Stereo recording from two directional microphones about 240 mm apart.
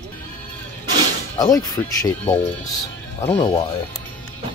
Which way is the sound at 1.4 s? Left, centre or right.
Centre.